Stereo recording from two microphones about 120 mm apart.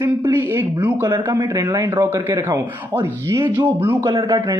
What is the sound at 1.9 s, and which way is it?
A man's voice, 15° right (ahead or behind).